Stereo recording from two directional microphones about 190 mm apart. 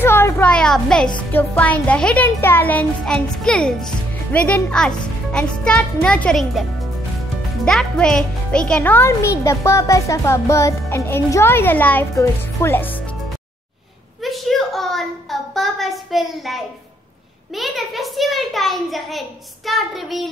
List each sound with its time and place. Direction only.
0.0 s music: 10° left (ahead or behind)
1.3 s a child's voice: 10° left (ahead or behind)
7.6 s speech: 5° left (ahead or behind)
14.2 s a sound: centre (ahead or behind)